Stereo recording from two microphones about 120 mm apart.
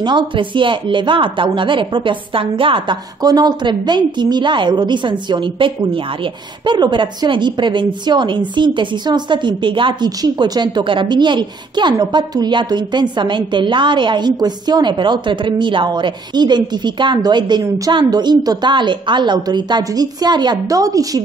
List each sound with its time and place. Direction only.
0.0 s a woman's voice: 40° right (ahead or behind)